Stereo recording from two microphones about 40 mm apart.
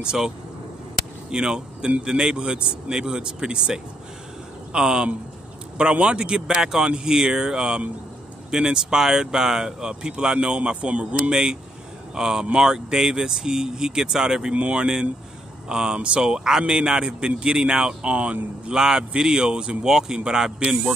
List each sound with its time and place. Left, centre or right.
0.0 s a man's voice: right
1.3 s a man's voice: centre
12.2 s a man's voice: centre
14.5 s a man's voice: right
18.7 s a man's voice: centre